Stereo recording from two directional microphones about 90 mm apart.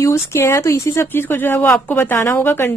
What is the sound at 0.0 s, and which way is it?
Speech, 30° left (ahead or behind).